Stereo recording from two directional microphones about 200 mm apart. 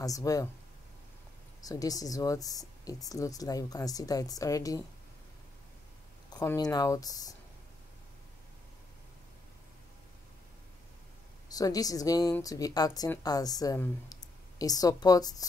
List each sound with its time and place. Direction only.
0.0 s speech: 15° left (ahead or behind)
1.6 s speech: 20° left (ahead or behind)
6.3 s speech: 20° left (ahead or behind)
11.4 s speech: 20° left (ahead or behind)